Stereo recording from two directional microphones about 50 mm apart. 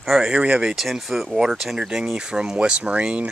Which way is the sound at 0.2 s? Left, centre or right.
Right.